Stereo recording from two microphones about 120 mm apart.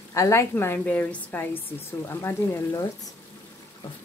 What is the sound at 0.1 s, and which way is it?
A woman's voice, 25° left (ahead or behind).